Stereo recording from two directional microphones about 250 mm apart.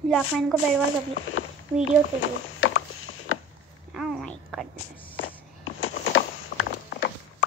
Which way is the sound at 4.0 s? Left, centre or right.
Centre.